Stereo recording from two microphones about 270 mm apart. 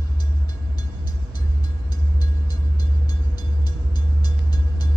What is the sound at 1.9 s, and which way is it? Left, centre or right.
Train, centre.